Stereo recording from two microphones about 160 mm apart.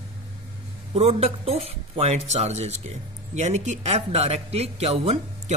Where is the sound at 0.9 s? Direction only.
40° right (ahead or behind).